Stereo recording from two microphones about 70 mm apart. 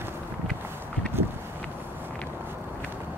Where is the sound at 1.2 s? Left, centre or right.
Right.